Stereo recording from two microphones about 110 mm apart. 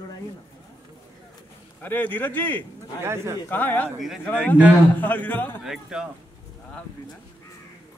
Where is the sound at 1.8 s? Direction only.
15° left (ahead or behind).